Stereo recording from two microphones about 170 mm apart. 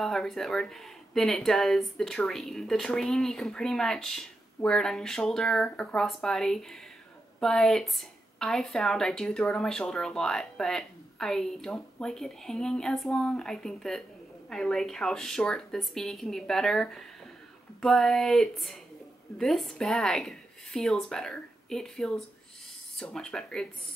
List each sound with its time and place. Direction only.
0.0 s speech: 5° left (ahead or behind)